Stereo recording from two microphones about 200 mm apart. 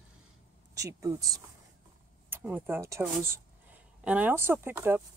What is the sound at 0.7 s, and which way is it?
Speech, 15° right (ahead or behind).